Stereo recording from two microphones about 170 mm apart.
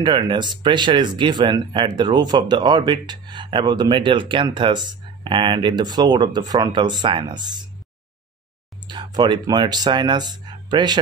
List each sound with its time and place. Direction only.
0.0 s speech: 25° right (ahead or behind)
8.8 s speech: 25° right (ahead or behind)